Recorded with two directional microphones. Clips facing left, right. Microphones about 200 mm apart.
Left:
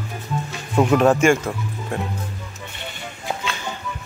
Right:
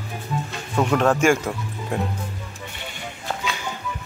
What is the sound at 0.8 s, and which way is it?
Speech, 10° left (ahead or behind).